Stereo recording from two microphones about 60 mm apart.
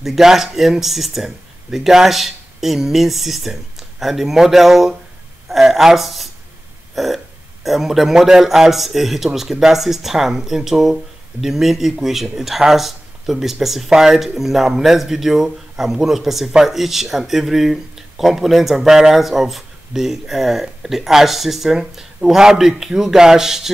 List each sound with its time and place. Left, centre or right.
0.0 s speech: centre